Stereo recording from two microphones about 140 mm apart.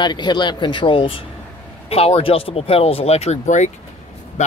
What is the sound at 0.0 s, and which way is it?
Speech, 30° left (ahead or behind).